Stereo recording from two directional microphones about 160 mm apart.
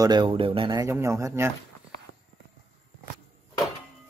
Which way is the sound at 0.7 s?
15° right (ahead or behind).